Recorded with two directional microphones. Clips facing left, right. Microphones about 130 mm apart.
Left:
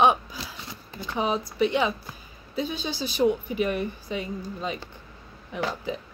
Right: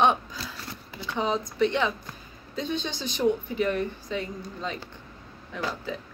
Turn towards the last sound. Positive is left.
turn(degrees=20)  # may be behind; listen again after turning